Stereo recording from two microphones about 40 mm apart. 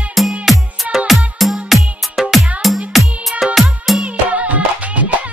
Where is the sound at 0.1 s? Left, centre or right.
Centre.